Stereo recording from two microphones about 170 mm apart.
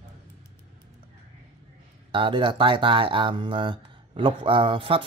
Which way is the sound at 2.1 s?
30° right (ahead or behind).